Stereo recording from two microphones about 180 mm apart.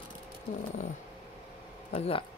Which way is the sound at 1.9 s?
35° left (ahead or behind).